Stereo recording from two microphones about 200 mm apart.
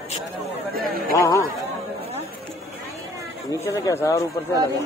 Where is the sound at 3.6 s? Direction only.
15° left (ahead or behind).